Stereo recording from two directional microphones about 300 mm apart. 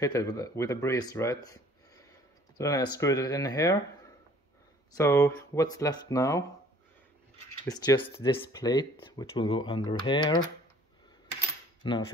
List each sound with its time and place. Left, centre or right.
0.0 s speech: centre
4.9 s speech: centre
7.6 s speech: centre
11.8 s speech: centre